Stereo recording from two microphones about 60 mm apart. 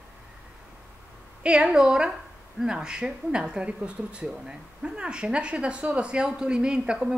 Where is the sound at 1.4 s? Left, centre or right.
Centre.